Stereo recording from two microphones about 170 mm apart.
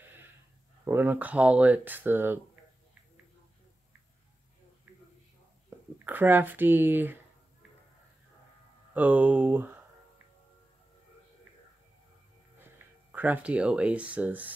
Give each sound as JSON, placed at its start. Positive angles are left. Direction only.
{"t": 0.8, "sound": "speech", "side_deg": -10}
{"t": 5.7, "sound": "a sound", "side_deg": -15}
{"t": 6.0, "sound": "speech", "side_deg": -10}
{"t": 8.9, "sound": "speech", "side_deg": -10}
{"t": 13.1, "sound": "speech", "side_deg": -10}